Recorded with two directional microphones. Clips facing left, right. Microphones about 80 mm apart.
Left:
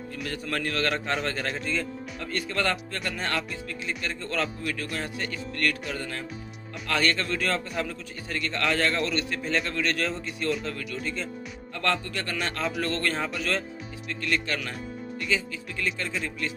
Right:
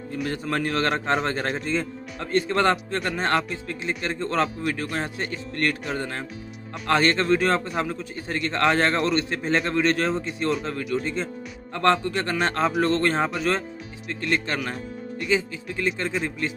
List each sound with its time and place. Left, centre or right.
0.1 s a man's voice: right